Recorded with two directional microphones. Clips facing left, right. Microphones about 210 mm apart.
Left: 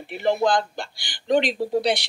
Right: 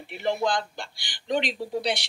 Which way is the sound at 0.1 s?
55° left (ahead or behind).